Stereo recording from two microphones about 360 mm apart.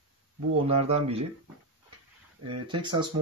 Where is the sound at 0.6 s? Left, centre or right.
Centre.